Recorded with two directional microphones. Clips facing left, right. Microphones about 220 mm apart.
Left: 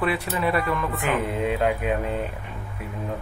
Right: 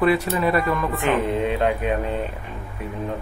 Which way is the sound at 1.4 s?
5° left (ahead or behind).